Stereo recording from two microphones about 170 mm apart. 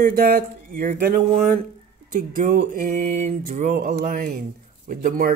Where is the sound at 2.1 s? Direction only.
50° right (ahead or behind).